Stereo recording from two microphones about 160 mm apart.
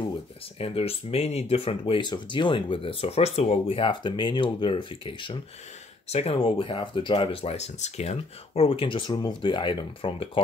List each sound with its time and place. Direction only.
0.6 s speech: 40° left (ahead or behind)